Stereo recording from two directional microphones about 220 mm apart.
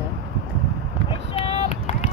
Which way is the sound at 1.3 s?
30° left (ahead or behind).